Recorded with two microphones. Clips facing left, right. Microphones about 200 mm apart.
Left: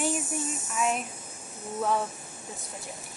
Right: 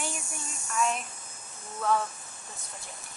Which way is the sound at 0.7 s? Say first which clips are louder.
Even; 5° left (ahead or behind).